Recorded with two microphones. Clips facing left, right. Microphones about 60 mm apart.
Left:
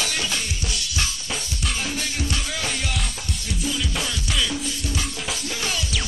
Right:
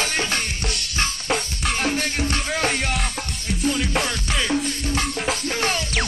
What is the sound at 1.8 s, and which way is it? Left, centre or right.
Music, right.